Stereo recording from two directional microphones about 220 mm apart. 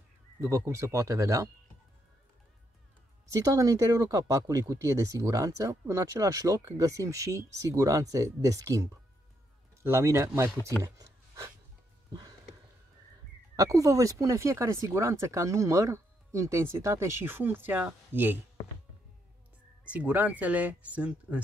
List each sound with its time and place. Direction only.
0.4 s speech: 15° right (ahead or behind)
3.3 s speech: 15° right (ahead or behind)
9.8 s speech: 10° right (ahead or behind)
10.8 s a sound: 15° right (ahead or behind)
13.6 s speech: 15° right (ahead or behind)
19.8 s speech: 5° right (ahead or behind)